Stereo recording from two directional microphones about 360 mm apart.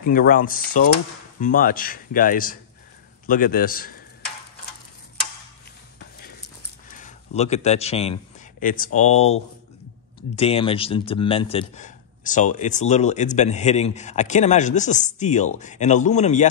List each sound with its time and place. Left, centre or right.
0.0 s speech: left
7.0 s a man's voice: centre